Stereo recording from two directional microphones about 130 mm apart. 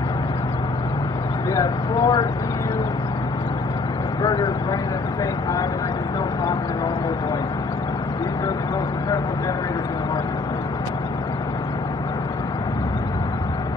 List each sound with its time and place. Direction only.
1.5 s speech: 30° left (ahead or behind)
4.2 s speech: 35° left (ahead or behind)